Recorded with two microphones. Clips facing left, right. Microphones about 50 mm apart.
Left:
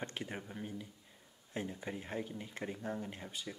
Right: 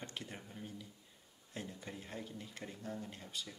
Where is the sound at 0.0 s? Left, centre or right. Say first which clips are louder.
Left 5 dB; left.